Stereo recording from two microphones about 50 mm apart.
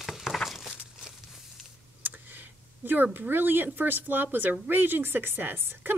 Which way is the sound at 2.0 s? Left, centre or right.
Right.